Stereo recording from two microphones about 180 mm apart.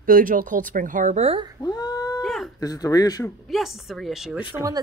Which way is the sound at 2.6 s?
20° left (ahead or behind).